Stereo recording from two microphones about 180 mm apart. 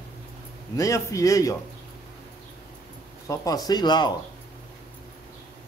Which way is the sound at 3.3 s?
20° left (ahead or behind).